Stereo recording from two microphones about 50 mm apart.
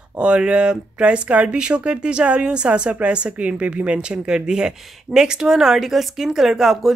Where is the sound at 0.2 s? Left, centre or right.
Right.